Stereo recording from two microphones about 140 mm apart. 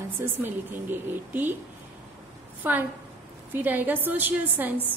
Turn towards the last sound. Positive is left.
turn(degrees=-10)  # may be behind; listen again after turning